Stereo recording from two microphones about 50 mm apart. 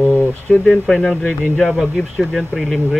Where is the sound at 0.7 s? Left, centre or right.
Centre.